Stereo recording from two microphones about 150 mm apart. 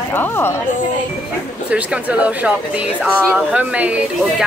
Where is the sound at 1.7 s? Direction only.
10° right (ahead or behind).